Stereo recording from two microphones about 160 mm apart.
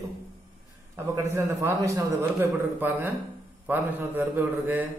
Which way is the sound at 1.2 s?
15° right (ahead or behind).